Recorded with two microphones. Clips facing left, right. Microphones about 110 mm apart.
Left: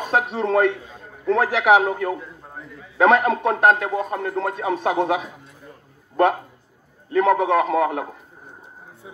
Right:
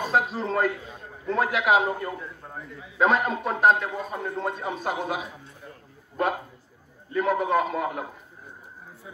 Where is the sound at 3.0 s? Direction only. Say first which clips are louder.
Left 6 dB; 70° left (ahead or behind).